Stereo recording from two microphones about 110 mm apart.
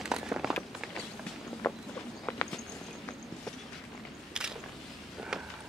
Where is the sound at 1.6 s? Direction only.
15° left (ahead or behind).